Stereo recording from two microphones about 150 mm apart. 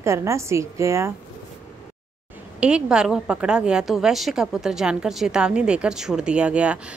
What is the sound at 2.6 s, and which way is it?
A woman's voice, 5° right (ahead or behind).